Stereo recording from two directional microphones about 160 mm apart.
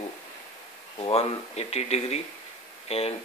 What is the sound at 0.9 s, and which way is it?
Speech, 35° left (ahead or behind).